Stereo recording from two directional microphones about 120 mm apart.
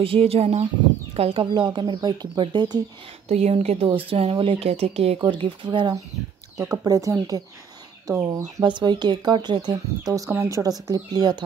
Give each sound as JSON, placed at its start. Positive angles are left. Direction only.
{"t": 0.0, "sound": "speech", "side_deg": -55}
{"t": 3.3, "sound": "speech", "side_deg": -65}
{"t": 5.2, "sound": "speech", "side_deg": -45}
{"t": 6.8, "sound": "speech", "side_deg": -30}
{"t": 8.6, "sound": "speech", "side_deg": -40}